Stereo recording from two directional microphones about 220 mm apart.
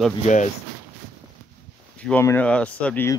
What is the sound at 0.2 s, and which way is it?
Speech, 35° left (ahead or behind).